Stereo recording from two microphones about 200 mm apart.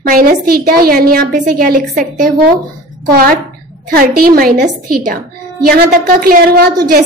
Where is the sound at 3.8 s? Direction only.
45° right (ahead or behind).